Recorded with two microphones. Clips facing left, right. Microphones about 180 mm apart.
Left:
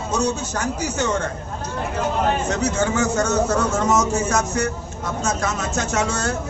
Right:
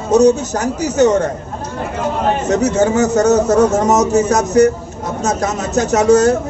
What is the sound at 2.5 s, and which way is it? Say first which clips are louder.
A man's voice: right 8 dB; 40° right (ahead or behind).